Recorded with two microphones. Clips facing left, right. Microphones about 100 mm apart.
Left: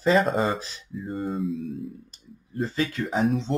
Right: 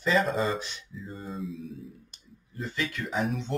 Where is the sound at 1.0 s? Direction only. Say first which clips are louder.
Left 9 dB; 60° left (ahead or behind).